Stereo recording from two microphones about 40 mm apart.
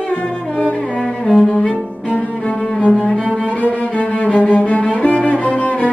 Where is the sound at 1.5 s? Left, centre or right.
Left.